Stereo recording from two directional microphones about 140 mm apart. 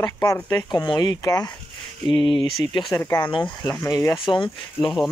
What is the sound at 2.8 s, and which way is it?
Speech, centre (ahead or behind).